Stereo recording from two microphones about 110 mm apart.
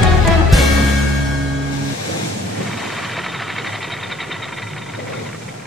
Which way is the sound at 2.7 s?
Centre (ahead or behind).